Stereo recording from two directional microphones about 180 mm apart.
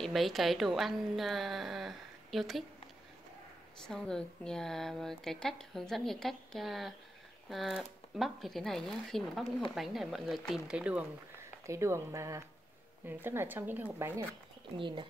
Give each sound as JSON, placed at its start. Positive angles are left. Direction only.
{"t": 0.0, "sound": "a woman's voice", "side_deg": 0}
{"t": 3.8, "sound": "a woman's voice", "side_deg": 5}
{"t": 14.8, "sound": "speech", "side_deg": -25}